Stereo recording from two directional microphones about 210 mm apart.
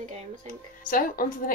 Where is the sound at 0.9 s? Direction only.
40° left (ahead or behind).